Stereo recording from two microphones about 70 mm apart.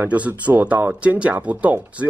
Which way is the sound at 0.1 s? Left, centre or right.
Right.